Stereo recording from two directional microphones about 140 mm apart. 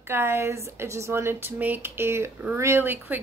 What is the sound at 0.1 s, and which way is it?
Speech, 15° right (ahead or behind).